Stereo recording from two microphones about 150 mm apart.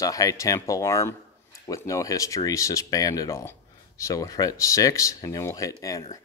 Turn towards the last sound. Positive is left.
turn(degrees=25)  # may be behind; listen again after turning